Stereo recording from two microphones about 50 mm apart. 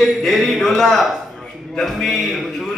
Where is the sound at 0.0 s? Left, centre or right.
Centre.